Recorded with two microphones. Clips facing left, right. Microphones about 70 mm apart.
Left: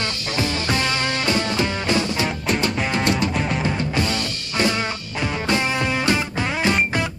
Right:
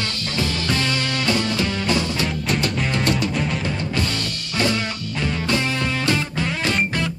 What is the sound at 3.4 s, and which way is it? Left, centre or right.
Music, left.